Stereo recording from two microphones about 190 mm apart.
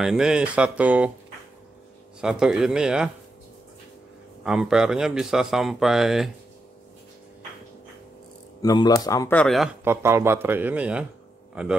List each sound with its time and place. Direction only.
0.0 s speech: 5° right (ahead or behind)
2.1 s speech: 5° right (ahead or behind)
4.5 s speech: 5° right (ahead or behind)
8.6 s speech: 20° left (ahead or behind)
9.4 s speech: centre (ahead or behind)
9.8 s speech: 15° right (ahead or behind)